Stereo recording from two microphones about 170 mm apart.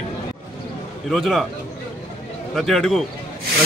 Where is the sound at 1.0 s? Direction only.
Centre (ahead or behind).